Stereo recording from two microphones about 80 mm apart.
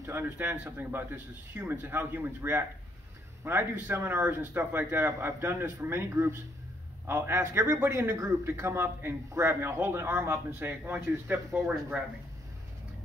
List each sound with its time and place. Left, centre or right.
0.0 s a man's voice: right